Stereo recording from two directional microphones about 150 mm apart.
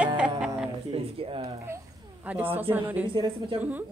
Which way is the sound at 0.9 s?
40° right (ahead or behind).